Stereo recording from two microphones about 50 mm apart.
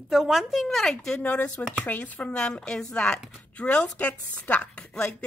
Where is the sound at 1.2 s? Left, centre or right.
Left.